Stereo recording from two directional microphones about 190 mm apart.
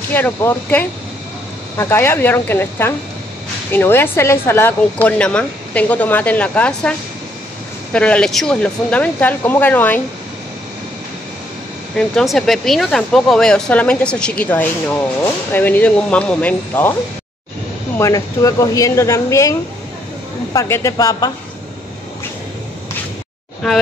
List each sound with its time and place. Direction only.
0.1 s speech: 10° left (ahead or behind)
12.0 s speech: centre (ahead or behind)
17.9 s speech: 15° left (ahead or behind)
20.5 s speech: 15° left (ahead or behind)
23.6 s speech: centre (ahead or behind)